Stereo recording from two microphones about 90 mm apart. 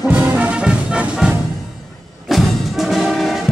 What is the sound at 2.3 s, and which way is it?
Music, centre (ahead or behind).